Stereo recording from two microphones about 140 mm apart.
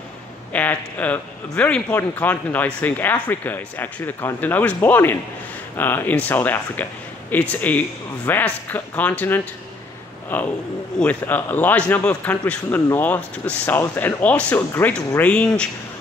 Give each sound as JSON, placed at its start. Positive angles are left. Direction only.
{"t": 0.5, "sound": "a man's voice", "side_deg": 10}